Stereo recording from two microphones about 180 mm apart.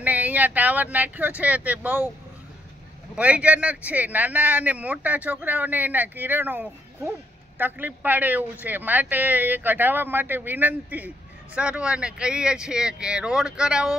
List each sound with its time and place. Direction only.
0.0 s speech: 10° right (ahead or behind)
3.2 s speech: 5° right (ahead or behind)